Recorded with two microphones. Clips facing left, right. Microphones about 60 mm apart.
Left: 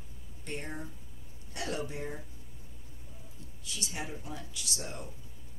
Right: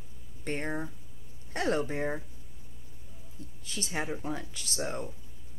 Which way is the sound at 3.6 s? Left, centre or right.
Right.